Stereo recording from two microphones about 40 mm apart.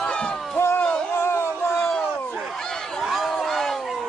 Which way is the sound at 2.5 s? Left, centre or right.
Centre.